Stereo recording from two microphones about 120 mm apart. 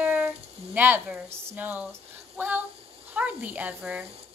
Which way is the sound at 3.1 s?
10° right (ahead or behind).